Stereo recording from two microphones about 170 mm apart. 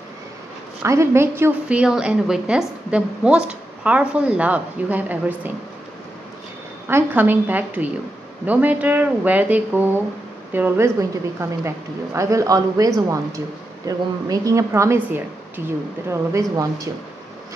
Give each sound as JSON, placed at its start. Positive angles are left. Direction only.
{"t": 0.8, "sound": "a woman's voice", "side_deg": -15}
{"t": 6.9, "sound": "a woman's voice", "side_deg": -15}